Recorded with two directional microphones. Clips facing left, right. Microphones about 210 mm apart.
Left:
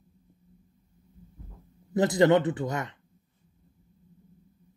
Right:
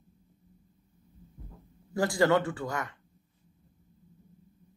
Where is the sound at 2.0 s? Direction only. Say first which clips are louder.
Left 4 dB; 20° left (ahead or behind).